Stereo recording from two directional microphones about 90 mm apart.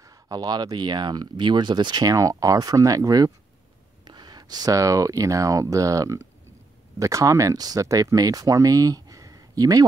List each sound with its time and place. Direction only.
0.0 s speech: 45° right (ahead or behind)
4.0 s speech: 55° right (ahead or behind)